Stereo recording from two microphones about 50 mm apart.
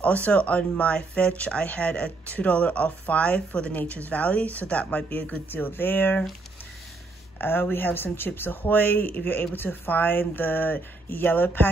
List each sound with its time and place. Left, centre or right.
0.0 s speech: left
3.7 s speech: left
7.3 s speech: left